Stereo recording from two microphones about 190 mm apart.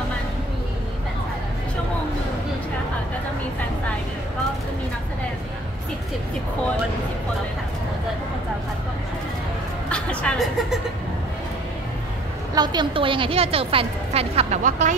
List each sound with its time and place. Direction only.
9.8 s music: 5° left (ahead or behind)
12.5 s a woman's voice: 20° right (ahead or behind); by 15.0 s 40° right (ahead or behind)